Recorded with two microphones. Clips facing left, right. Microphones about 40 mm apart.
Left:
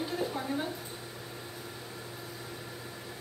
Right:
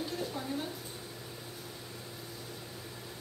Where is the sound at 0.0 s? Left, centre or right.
Left.